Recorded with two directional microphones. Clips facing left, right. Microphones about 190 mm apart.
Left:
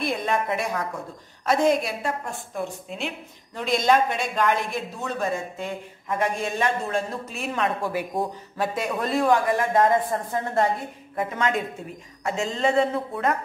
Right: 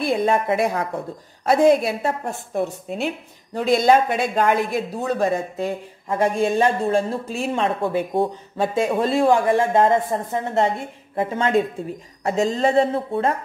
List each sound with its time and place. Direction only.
0.0 s a woman's voice: 30° right (ahead or behind)
3.7 s a woman's voice: 30° right (ahead or behind)